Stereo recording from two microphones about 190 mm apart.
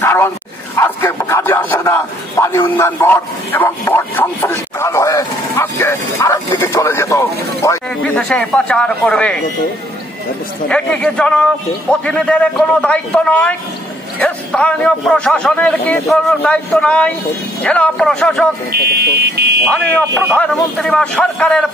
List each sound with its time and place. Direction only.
0.0 s dog: 10° left (ahead or behind)
0.7 s speech: 10° left (ahead or behind)
8.0 s speech: 5° left (ahead or behind)
10.7 s speech: 5° left (ahead or behind)
18.7 s speech: 55° right (ahead or behind)
20.3 s speech: 5° left (ahead or behind)